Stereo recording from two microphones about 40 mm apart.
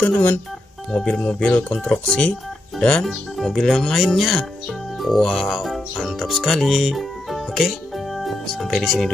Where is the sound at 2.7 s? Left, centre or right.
Left.